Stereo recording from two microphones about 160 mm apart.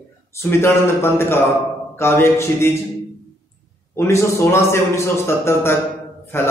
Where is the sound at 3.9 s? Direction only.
15° left (ahead or behind).